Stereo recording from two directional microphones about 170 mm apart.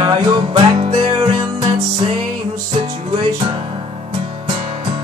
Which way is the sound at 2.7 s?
30° right (ahead or behind).